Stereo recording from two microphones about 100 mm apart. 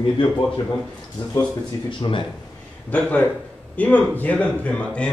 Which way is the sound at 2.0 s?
55° left (ahead or behind).